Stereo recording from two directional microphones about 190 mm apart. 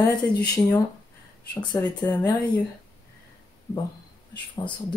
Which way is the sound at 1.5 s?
25° left (ahead or behind).